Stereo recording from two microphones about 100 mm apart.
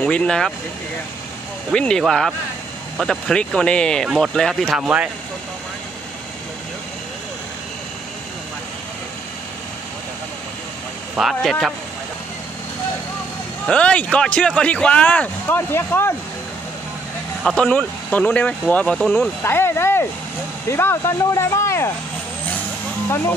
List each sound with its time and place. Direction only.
0.0 s speech: 10° left (ahead or behind)
1.7 s speech: 10° left (ahead or behind)
4.7 s speech: 10° right (ahead or behind)
11.1 s speech: 5° right (ahead or behind)
13.7 s speech: 10° left (ahead or behind)
17.4 s speech: 10° left (ahead or behind); by 21.9 s 30° left (ahead or behind)